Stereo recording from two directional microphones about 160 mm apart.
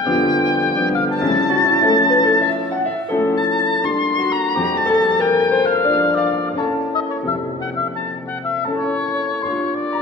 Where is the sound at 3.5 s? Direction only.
30° left (ahead or behind).